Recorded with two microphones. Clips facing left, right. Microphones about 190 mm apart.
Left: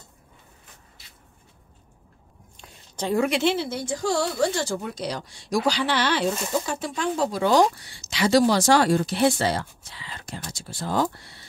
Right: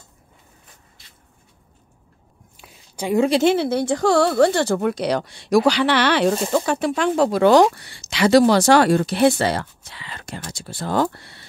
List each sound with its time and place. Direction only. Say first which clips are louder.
2.5 s a sound: right 1 dB; 5° right (ahead or behind)
3.2 s speech: right 6 dB; 35° right (ahead or behind)
3.4 s speech: right 7 dB; 60° right (ahead or behind)